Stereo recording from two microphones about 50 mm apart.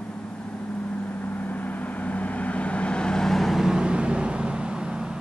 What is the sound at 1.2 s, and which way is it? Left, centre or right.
Vehicle, left.